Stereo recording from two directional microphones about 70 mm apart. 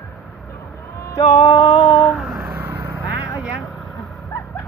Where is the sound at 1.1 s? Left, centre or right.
Left.